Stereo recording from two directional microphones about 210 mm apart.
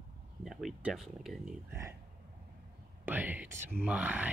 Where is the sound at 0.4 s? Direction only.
Centre (ahead or behind).